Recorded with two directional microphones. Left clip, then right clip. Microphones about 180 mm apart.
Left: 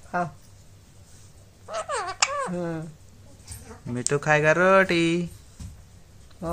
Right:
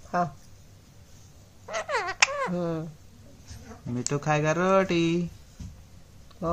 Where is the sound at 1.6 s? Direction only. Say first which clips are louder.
Even; 10° right (ahead or behind).